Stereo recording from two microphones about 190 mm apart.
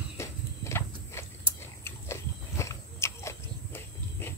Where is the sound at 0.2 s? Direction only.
15° left (ahead or behind).